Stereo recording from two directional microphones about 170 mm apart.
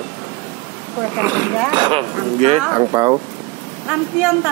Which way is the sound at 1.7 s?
30° right (ahead or behind).